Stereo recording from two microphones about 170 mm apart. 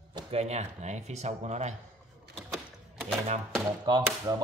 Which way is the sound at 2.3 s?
Centre (ahead or behind).